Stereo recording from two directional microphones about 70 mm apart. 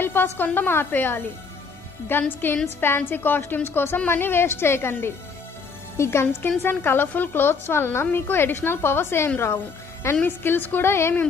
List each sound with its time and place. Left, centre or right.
0.0 s a woman's voice: left